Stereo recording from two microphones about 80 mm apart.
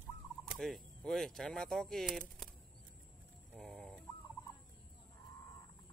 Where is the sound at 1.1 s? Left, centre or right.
Centre.